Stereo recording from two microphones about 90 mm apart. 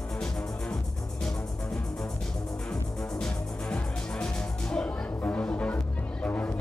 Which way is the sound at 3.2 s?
10° left (ahead or behind).